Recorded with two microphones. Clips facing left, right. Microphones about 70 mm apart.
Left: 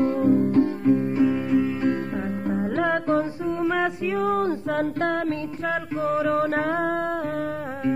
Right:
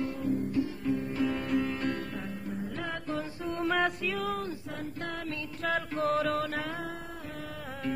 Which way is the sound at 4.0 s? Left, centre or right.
Left.